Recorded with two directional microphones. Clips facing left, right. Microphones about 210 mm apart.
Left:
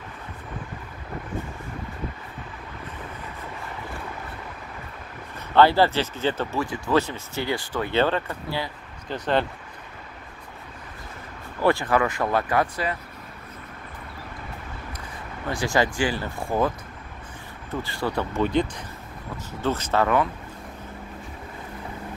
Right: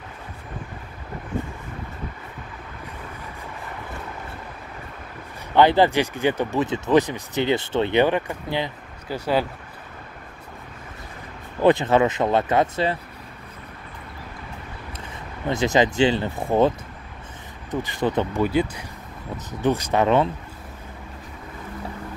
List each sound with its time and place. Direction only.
5.5 s speech: 15° right (ahead or behind)
9.1 s speech: 5° right (ahead or behind)
11.6 s speech: 20° right (ahead or behind)
15.4 s speech: 20° right (ahead or behind)
18.4 s speech: 10° right (ahead or behind)